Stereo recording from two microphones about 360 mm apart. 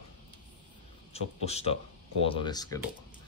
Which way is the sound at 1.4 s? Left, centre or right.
Centre.